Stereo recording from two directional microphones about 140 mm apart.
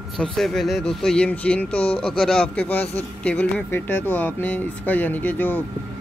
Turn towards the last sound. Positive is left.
turn(degrees=10)  # may be behind; listen again after turning